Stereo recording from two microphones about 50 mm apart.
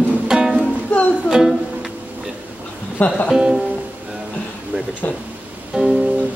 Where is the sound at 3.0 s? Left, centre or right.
Left.